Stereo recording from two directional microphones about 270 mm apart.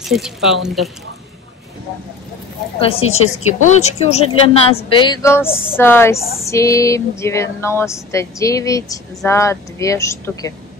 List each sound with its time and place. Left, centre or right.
0.0 s speech: centre
2.8 s a woman's voice: left